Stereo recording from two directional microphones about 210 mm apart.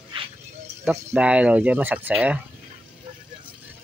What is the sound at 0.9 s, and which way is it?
Speech, 10° right (ahead or behind).